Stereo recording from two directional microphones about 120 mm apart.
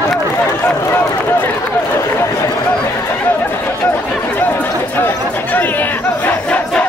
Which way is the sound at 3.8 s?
15° left (ahead or behind).